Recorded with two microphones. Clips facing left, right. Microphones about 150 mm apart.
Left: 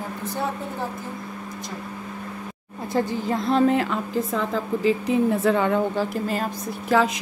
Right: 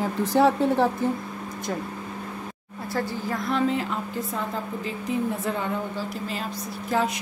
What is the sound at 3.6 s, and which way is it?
Speech, 65° left (ahead or behind).